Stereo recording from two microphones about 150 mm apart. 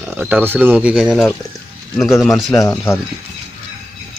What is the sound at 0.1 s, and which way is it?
Speech, 10° right (ahead or behind).